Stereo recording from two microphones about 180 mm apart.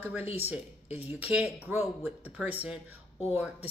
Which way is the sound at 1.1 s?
10° right (ahead or behind).